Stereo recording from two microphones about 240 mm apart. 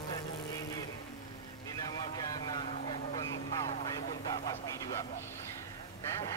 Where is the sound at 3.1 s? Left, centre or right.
Centre.